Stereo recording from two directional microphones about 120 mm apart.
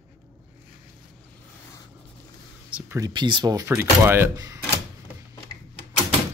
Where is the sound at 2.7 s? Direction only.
10° right (ahead or behind).